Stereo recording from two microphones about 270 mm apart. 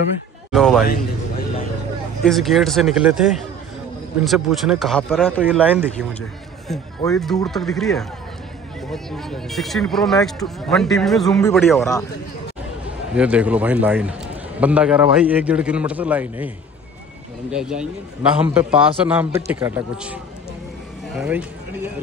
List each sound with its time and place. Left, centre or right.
0.5 s a man's voice: centre
2.2 s a man's voice: centre
13.1 s a man's voice: centre
21.2 s speech: centre